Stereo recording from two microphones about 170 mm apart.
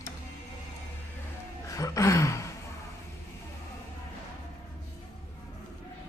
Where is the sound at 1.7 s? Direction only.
20° left (ahead or behind).